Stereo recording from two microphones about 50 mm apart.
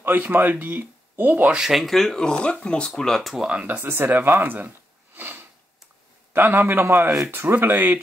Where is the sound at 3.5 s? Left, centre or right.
Right.